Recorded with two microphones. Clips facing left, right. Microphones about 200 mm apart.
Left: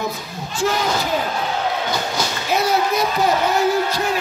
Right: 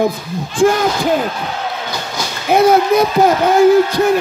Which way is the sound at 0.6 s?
50° right (ahead or behind).